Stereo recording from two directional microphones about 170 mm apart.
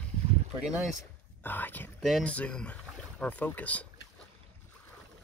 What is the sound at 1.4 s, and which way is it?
Speech, 10° left (ahead or behind).